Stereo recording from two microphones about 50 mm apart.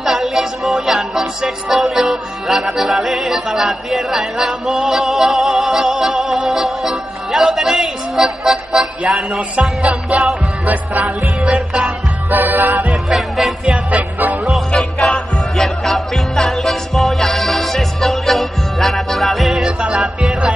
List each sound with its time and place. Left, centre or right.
0.0 s music: centre
11.4 s music: centre
12.3 s music: right
12.8 s music: centre
14.8 s music: centre